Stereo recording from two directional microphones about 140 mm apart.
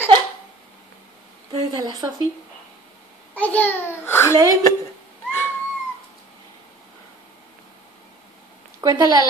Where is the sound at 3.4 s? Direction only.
10° left (ahead or behind).